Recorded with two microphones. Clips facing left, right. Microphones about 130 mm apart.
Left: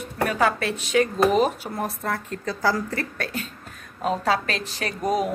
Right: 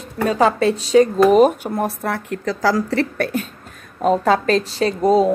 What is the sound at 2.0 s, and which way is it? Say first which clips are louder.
Speech: right 5 dB; 80° right.